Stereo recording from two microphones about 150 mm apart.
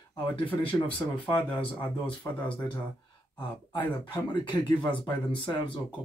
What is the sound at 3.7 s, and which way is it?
Speech, 30° left (ahead or behind).